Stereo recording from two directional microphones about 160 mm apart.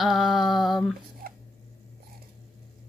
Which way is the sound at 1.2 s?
70° right (ahead or behind).